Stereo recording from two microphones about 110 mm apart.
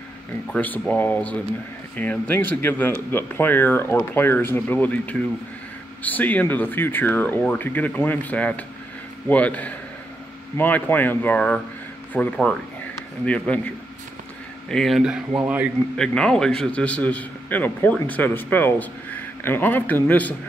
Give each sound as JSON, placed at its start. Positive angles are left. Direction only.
{"t": 0.5, "sound": "a man's voice", "side_deg": 15}
{"t": 14.7, "sound": "speech", "side_deg": 0}
{"t": 16.0, "sound": "a man's voice", "side_deg": 5}